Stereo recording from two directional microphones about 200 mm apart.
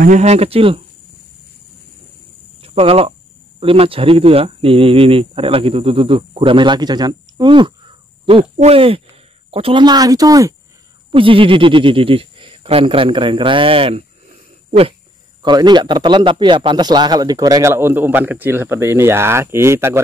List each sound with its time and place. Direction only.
0.0 s speech: 35° right (ahead or behind)
2.6 s a sound: 30° right (ahead or behind)
3.5 s speech: 30° right (ahead or behind)
15.4 s a man's voice: 20° right (ahead or behind)